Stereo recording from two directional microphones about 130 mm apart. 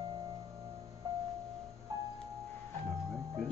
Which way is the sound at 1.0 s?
25° right (ahead or behind).